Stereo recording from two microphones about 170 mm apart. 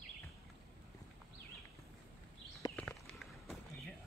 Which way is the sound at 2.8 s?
5° left (ahead or behind).